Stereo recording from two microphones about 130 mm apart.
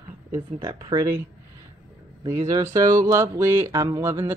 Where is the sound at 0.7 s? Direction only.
35° right (ahead or behind).